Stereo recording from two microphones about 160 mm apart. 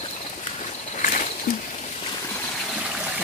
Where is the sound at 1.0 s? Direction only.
55° left (ahead or behind).